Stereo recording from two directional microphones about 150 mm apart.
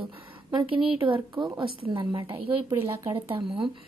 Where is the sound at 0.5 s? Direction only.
35° right (ahead or behind).